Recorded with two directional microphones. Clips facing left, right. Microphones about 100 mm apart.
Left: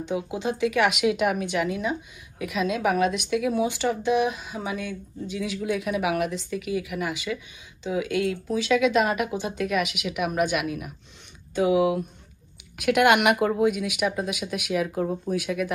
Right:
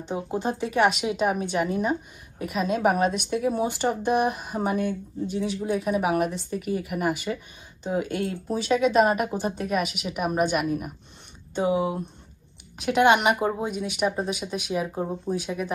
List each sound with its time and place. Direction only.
0.0 s speech: 40° right (ahead or behind)